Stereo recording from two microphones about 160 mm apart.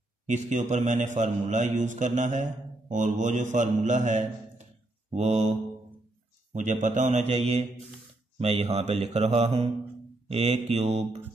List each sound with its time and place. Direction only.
0.3 s a man's voice: 50° right (ahead or behind)
6.5 s a man's voice: 50° right (ahead or behind)